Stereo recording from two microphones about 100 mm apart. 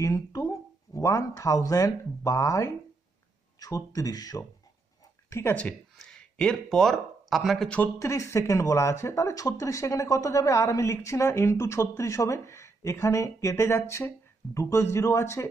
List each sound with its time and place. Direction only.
0.0 s speech: 35° left (ahead or behind)
5.3 s speech: 25° left (ahead or behind)
5.9 s speech: 5° left (ahead or behind)
8.0 s speech: 30° left (ahead or behind)